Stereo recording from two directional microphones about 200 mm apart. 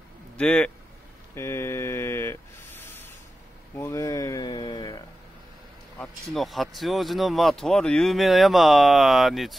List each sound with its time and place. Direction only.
0.4 s speech: 5° left (ahead or behind)
1.3 s a sound: 10° left (ahead or behind)
5.9 s speech: centre (ahead or behind)